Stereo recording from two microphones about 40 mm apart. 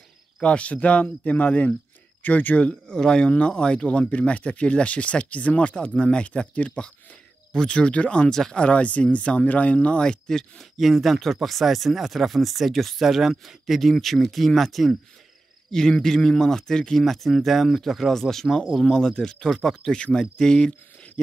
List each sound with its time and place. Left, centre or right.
0.4 s speech: left
2.7 s speech: centre
7.5 s speech: left
10.8 s speech: centre
15.7 s speech: centre
17.0 s speech: centre
18.9 s speech: centre